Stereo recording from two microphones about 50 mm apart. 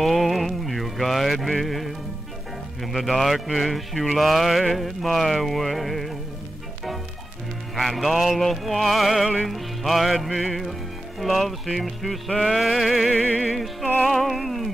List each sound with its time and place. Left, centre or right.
0.0 s music: centre
7.7 s music: centre
13.1 s music: centre
13.5 s music: centre